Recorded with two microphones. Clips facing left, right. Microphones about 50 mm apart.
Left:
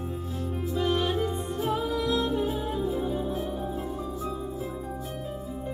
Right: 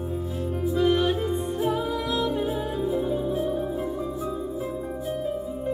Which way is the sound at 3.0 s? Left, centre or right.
Centre.